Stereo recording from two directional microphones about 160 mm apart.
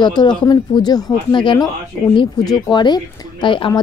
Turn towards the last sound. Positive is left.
turn(degrees=30)  # may be behind; listen again after turning